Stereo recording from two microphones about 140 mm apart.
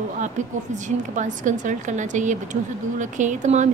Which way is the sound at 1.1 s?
65° right (ahead or behind).